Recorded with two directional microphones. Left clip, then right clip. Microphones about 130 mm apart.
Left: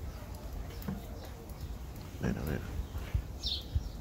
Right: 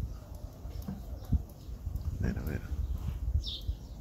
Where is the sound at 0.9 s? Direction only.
5° left (ahead or behind).